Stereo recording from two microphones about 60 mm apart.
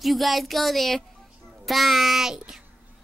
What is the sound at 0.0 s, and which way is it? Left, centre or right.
Speech, centre.